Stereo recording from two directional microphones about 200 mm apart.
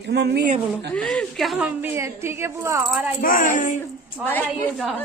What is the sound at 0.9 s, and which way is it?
A woman's voice, 5° left (ahead or behind).